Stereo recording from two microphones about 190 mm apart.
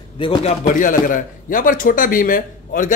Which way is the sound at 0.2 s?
30° left (ahead or behind).